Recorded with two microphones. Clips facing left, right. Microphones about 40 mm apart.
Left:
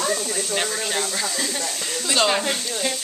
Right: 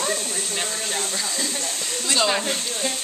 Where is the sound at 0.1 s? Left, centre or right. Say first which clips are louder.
Left 2 dB; right.